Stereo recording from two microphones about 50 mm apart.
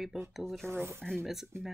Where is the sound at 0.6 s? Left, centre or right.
Right.